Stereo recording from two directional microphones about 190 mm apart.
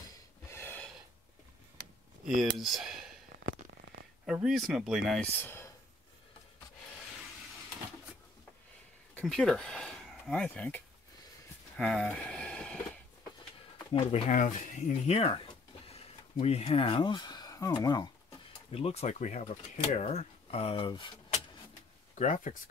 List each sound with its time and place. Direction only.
0.0 s a sound: 15° left (ahead or behind)
2.2 s speech: centre (ahead or behind)
4.3 s speech: centre (ahead or behind)
9.1 s speech: 5° left (ahead or behind)
11.7 s a sound: 5° left (ahead or behind)
13.9 s speech: 35° left (ahead or behind)
22.1 s speech: 40° left (ahead or behind)